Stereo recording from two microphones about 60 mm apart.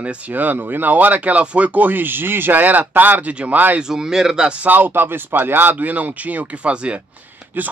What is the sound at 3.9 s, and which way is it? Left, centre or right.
Speech, centre.